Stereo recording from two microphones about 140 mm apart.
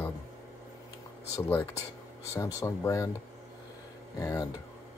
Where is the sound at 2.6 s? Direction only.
20° left (ahead or behind).